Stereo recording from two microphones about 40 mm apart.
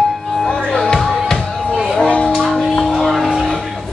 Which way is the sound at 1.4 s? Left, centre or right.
Centre.